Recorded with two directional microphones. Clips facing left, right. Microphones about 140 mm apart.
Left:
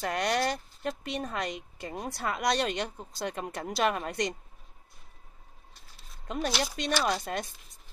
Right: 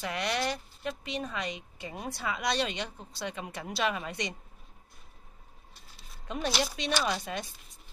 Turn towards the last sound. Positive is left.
turn(degrees=50)  # may be behind; listen again after turning